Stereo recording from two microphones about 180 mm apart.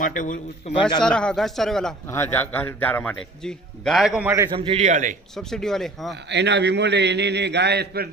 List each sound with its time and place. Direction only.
0.0 s a man's voice: 45° left (ahead or behind)
0.7 s a man's voice: 25° left (ahead or behind)
1.0 s a man's voice: 5° left (ahead or behind)
2.0 s a man's voice: 15° left (ahead or behind); by 4.3 s 5° right (ahead or behind)
4.5 s a man's voice: 30° right (ahead or behind)
4.8 s a man's voice: 45° right (ahead or behind)
5.3 s a man's voice: 5° left (ahead or behind)
6.2 s a man's voice: 70° right (ahead or behind)